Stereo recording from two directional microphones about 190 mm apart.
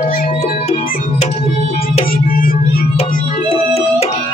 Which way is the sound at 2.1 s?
50° left (ahead or behind).